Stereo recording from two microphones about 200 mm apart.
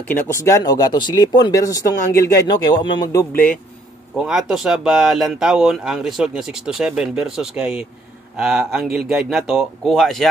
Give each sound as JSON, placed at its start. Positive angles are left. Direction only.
{"t": 0.1, "sound": "speech", "side_deg": 15}
{"t": 4.2, "sound": "speech", "side_deg": 0}